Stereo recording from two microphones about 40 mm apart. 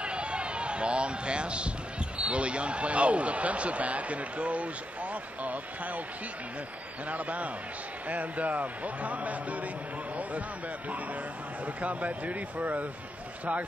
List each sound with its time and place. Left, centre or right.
0.0 s a sound: right
2.1 s speech: right
7.1 s speech: right
11.6 s speech: right